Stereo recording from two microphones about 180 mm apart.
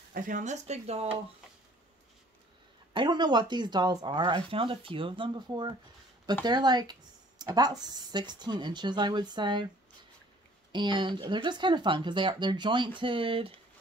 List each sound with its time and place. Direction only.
0.1 s speech: 45° right (ahead or behind)
2.9 s speech: 25° right (ahead or behind)
10.7 s speech: 25° right (ahead or behind)